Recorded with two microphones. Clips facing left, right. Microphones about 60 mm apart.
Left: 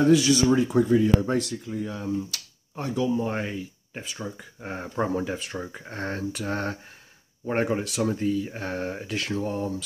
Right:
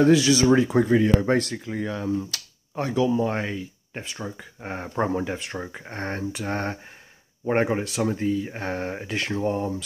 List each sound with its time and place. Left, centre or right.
0.0 s speech: right
0.7 s speech: right
3.3 s speech: right
3.9 s speech: centre